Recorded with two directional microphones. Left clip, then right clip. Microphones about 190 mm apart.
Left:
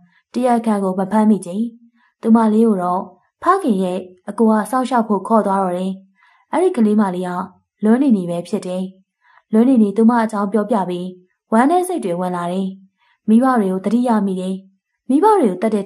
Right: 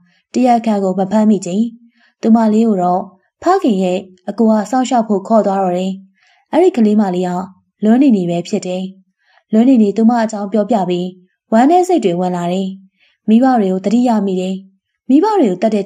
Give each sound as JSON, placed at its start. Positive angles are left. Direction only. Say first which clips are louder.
{"t": 0.3, "sound": "a woman's voice", "louder": "right 4 dB", "side_deg": -10}